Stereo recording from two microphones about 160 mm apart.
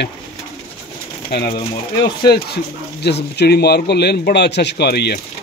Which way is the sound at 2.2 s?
80° left.